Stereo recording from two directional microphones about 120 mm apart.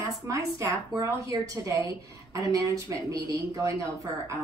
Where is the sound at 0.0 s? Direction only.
25° right (ahead or behind).